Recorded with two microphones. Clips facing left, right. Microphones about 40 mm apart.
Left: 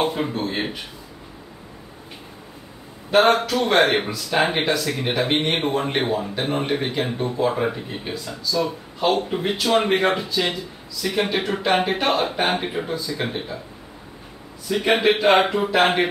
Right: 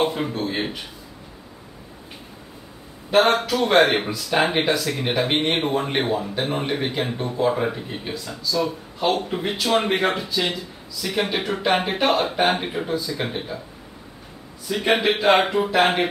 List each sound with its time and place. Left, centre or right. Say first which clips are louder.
0.0 s a man's voice: even; centre
3.1 s speech: left 1 dB; centre
14.7 s speech: left 2 dB; centre